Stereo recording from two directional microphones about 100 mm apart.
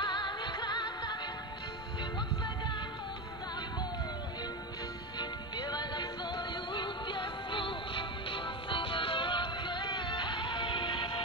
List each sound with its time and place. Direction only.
0.0 s music: 50° left (ahead or behind)
5.2 s music: 45° left (ahead or behind)